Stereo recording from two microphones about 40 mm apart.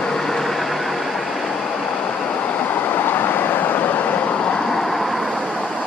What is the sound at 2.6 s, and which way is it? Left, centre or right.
Vehicle, left.